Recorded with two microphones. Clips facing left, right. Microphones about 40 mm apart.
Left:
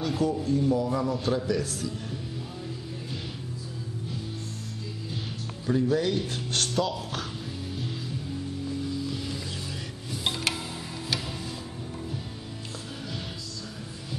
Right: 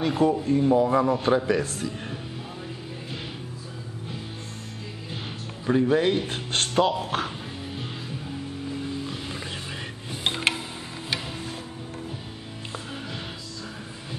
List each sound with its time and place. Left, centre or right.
0.0 s a man's voice: right
5.7 s a man's voice: right
8.6 s music: right